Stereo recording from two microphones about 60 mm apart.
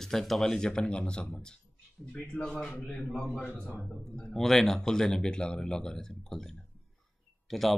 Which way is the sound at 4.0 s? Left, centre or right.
Centre.